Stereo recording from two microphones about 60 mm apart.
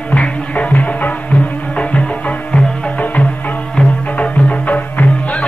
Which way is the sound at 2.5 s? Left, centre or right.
Left.